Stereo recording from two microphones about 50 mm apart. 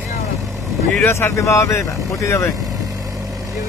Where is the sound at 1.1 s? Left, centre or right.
Left.